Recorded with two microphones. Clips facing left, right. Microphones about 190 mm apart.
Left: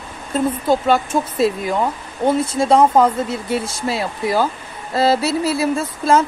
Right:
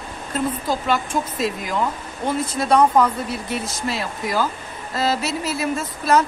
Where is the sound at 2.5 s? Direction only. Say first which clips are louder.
Left 1 dB; 25° left (ahead or behind).